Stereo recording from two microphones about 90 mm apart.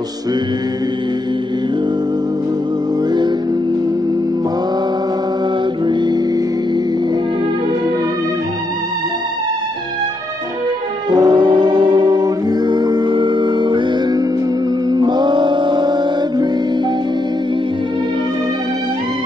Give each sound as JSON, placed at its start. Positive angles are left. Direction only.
{"t": 11.1, "sound": "music", "side_deg": -60}